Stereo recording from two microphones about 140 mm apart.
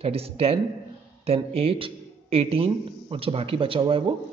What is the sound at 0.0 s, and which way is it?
A man's voice, 45° right (ahead or behind).